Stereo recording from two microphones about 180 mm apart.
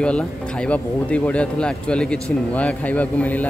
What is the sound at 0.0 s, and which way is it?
Speech, 5° left (ahead or behind).